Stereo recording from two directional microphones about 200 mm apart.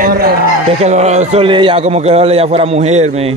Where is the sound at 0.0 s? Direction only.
50° right (ahead or behind).